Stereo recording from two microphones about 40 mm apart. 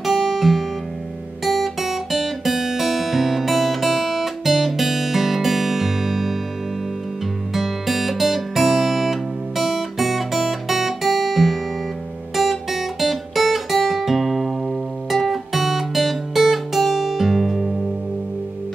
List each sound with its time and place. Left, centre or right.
0.0 s guitar: centre
7.5 s guitar: centre
15.0 s music: centre